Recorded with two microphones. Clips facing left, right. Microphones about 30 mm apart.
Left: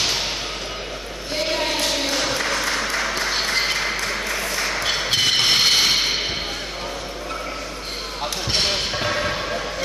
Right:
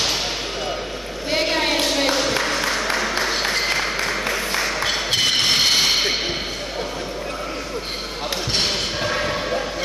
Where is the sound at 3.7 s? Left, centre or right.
Centre.